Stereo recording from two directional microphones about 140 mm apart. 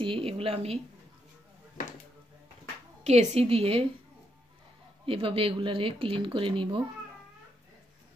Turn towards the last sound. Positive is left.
turn(degrees=-35)  # may be behind; listen again after turning